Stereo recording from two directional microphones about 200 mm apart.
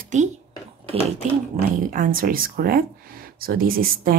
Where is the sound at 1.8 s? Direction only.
40° right (ahead or behind).